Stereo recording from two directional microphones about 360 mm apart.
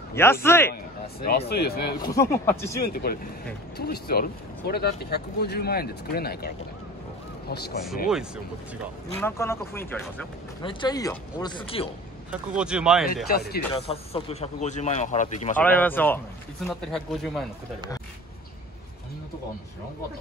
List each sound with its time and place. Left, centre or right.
0.1 s speech: centre
1.2 s speech: left
2.1 s speech: centre
2.8 s speech: left
9.2 s speech: centre
12.3 s speech: centre
13.5 s speech: centre
15.5 s speech: centre